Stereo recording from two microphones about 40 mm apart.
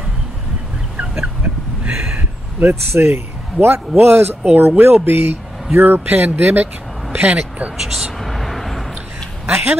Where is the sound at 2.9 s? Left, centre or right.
Right.